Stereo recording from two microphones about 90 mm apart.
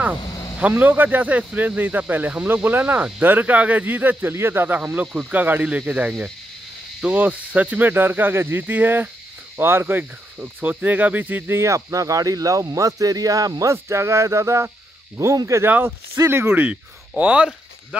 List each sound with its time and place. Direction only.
0.3 s a sound: 45° left (ahead or behind)
0.6 s speech: 15° right (ahead or behind)
9.6 s cricket: 25° right (ahead or behind)
16.3 s speech: 25° right (ahead or behind)
17.1 s speech: 15° right (ahead or behind)